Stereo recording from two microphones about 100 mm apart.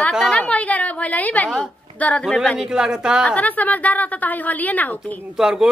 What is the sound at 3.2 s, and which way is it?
A woman's voice, 15° left (ahead or behind).